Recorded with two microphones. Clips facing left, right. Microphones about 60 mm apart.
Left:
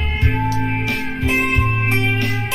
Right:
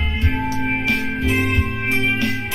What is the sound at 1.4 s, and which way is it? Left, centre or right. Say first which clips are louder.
Music: left 2 dB; left.